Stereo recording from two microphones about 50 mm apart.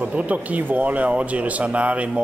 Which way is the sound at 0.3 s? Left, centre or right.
Right.